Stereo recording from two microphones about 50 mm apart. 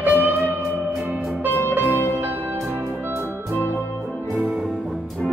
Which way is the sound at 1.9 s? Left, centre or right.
Left.